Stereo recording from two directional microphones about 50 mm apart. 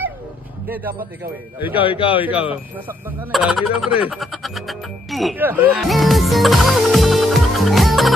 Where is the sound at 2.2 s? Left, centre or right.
Right.